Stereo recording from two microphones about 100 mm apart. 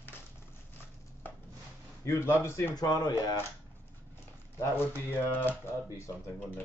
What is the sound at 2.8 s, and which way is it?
Speech, 40° left (ahead or behind).